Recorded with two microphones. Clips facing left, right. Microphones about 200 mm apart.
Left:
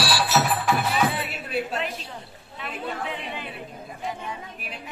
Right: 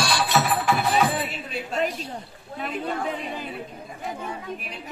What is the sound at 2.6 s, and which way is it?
Chatter, 40° right (ahead or behind).